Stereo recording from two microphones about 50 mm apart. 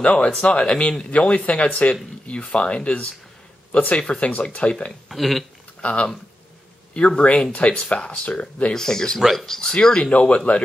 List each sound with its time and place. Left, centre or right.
0.0 s speech: left
4.6 s speech: left
5.1 s speech: centre
5.8 s speech: left
8.7 s speech: centre
9.2 s speech: centre
9.6 s speech: centre
10.1 s speech: left